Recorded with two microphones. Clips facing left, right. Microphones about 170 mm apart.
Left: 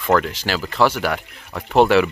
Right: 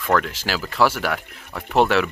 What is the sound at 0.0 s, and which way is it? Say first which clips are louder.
Speech: left 3 dB; centre (ahead or behind).